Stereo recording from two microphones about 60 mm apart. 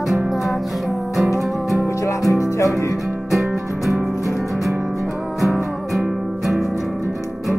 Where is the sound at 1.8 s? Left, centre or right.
Left.